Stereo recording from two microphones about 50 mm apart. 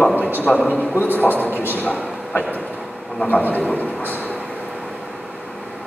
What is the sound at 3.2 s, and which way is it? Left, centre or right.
Speech, left.